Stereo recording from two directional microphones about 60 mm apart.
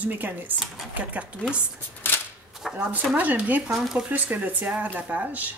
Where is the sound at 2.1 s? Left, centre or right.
Left.